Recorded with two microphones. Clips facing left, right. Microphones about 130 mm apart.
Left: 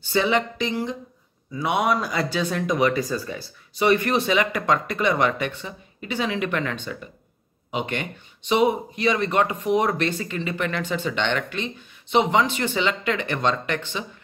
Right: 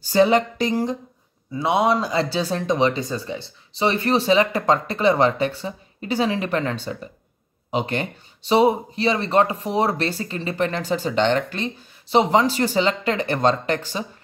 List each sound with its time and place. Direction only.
0.0 s speech: 40° right (ahead or behind)
1.5 s speech: 30° right (ahead or behind)